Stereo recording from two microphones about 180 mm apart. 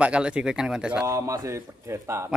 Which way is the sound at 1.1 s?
20° right (ahead or behind).